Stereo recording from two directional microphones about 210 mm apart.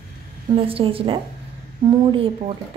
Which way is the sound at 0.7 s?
25° right (ahead or behind).